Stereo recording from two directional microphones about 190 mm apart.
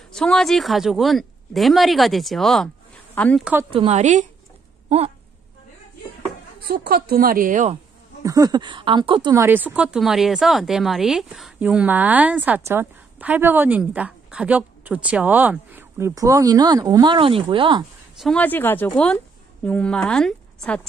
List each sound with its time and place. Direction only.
0.1 s a woman's voice: 5° left (ahead or behind)
3.7 s speech: 35° right (ahead or behind)
4.8 s a sound: 35° right (ahead or behind)
6.6 s a woman's voice: 50° right (ahead or behind)
8.2 s speech: 20° right (ahead or behind)
18.2 s a woman's voice: 5° left (ahead or behind)